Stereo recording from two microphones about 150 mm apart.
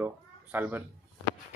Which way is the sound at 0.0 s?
10° right (ahead or behind).